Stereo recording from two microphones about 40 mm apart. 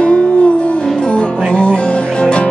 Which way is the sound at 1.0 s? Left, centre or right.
Left.